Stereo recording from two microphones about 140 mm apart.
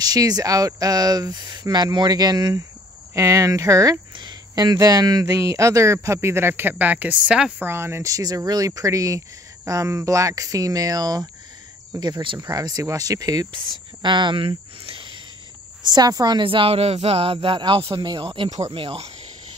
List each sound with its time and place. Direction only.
0.0 s speech: 25° right (ahead or behind)
18.5 s speech: 55° right (ahead or behind)